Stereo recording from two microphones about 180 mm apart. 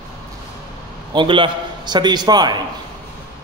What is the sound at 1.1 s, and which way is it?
A man's voice, 30° right (ahead or behind).